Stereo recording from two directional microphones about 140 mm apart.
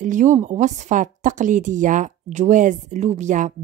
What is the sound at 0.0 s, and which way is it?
A woman's voice, 60° right (ahead or behind).